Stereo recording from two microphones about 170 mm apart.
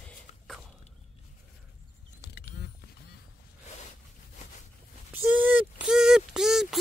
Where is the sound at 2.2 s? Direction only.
75° left (ahead or behind).